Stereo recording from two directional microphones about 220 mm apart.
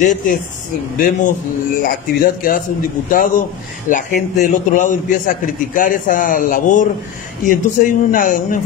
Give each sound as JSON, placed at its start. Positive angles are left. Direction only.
{"t": 0.0, "sound": "a man's voice", "side_deg": 35}
{"t": 3.1, "sound": "a man's voice", "side_deg": 40}